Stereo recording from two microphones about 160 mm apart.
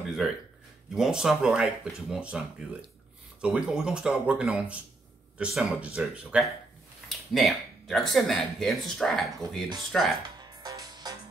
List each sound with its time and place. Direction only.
0.2 s speech: centre (ahead or behind)
10.4 s music: 25° right (ahead or behind)